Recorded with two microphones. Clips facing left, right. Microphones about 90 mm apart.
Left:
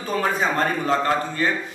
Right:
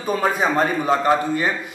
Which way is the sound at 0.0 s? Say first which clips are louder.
Right 2 dB; 15° right (ahead or behind).